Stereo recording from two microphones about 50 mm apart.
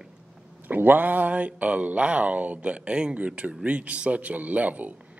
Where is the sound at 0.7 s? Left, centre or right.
Right.